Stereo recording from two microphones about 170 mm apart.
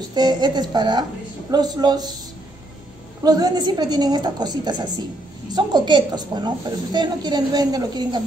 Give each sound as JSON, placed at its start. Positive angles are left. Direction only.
{"t": 0.1, "sound": "a woman's voice", "side_deg": -25}
{"t": 3.2, "sound": "a woman's voice", "side_deg": -20}